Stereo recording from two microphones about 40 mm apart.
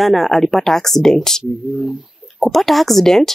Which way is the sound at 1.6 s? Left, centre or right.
Right.